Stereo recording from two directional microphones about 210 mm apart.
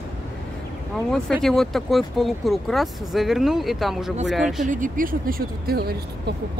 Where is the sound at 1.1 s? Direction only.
Centre (ahead or behind).